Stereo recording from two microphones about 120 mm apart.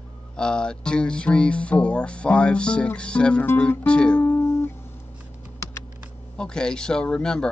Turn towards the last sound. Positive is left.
turn(degrees=5)  # may be behind; listen again after turning